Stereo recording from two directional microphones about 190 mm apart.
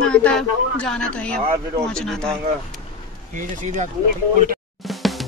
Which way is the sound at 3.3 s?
40° right (ahead or behind).